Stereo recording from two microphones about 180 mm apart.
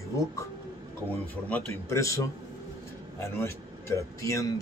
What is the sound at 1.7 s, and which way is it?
A man's voice, 15° left (ahead or behind).